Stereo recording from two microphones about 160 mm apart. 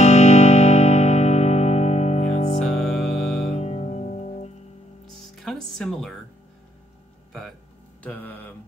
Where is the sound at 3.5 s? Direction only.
40° left (ahead or behind).